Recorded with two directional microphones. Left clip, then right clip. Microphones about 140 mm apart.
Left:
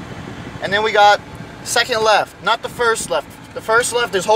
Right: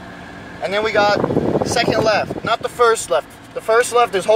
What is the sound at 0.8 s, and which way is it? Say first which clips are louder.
Speech: left 4 dB; 35° left (ahead or behind).